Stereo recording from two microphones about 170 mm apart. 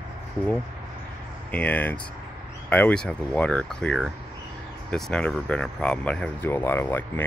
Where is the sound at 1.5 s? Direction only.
10° left (ahead or behind).